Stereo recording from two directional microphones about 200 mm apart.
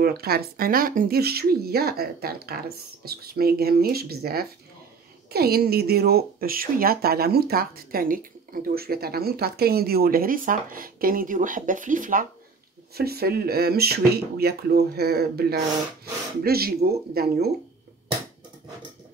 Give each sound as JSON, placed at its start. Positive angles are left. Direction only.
{"t": 0.0, "sound": "speech", "side_deg": -50}